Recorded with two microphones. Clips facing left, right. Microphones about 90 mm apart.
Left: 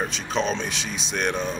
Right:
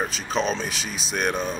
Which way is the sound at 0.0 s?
Centre (ahead or behind).